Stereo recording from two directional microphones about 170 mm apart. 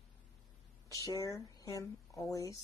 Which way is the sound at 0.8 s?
20° left (ahead or behind).